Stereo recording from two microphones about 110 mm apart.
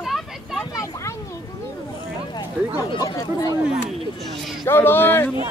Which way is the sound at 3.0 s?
35° left (ahead or behind).